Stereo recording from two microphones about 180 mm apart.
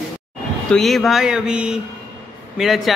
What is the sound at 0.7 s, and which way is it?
A man's voice, centre (ahead or behind).